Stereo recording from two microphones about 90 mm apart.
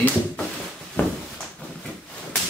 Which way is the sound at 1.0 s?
20° left (ahead or behind).